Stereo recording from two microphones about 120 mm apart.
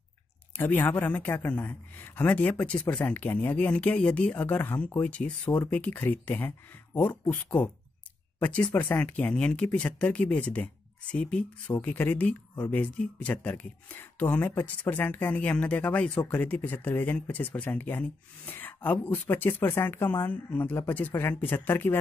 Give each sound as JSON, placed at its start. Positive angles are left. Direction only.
{"t": 0.6, "sound": "speech", "side_deg": 15}